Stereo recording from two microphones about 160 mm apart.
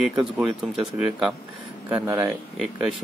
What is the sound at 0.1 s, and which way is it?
Speech, 5° right (ahead or behind).